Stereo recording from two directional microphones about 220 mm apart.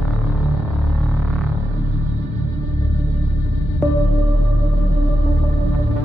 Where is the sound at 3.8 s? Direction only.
10° left (ahead or behind).